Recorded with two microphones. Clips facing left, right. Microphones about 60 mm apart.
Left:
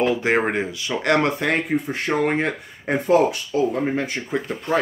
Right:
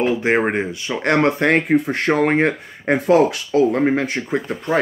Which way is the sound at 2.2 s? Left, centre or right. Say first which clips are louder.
Right 5 dB; right.